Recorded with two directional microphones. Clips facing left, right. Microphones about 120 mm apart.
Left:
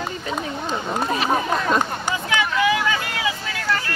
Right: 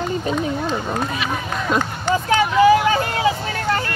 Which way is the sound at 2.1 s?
40° right (ahead or behind).